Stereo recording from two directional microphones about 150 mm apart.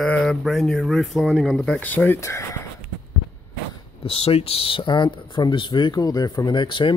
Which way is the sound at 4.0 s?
40° left (ahead or behind).